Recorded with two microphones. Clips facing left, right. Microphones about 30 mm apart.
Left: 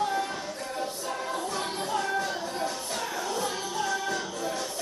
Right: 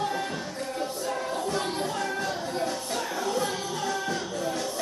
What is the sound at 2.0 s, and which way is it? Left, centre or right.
Music, right.